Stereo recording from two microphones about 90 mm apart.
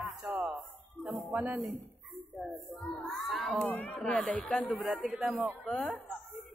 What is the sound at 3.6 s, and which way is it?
Speech, 20° left (ahead or behind).